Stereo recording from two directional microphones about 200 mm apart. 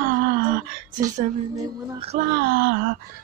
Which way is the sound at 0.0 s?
45° right (ahead or behind).